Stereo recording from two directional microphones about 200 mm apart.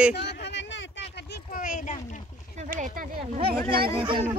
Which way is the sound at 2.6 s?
40° right (ahead or behind).